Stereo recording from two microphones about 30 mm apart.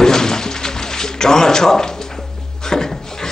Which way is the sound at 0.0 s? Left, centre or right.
Centre.